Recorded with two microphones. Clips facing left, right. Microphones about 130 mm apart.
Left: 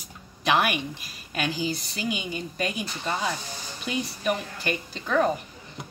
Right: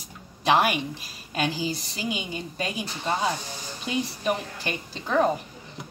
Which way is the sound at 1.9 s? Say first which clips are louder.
Left 1 dB; 25° right (ahead or behind).